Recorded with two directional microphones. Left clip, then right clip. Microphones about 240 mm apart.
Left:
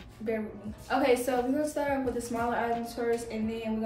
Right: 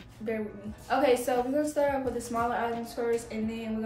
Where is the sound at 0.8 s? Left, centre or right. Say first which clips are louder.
Right 1 dB; centre.